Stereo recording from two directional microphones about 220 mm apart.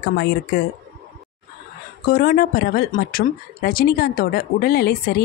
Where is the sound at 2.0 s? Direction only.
40° left (ahead or behind).